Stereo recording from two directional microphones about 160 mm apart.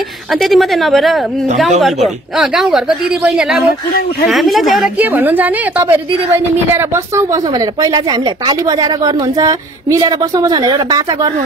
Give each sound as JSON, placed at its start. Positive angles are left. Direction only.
{"t": 0.3, "sound": "a woman's voice", "side_deg": 0}